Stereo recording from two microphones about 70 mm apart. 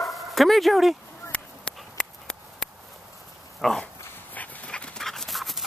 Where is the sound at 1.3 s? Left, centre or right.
Centre.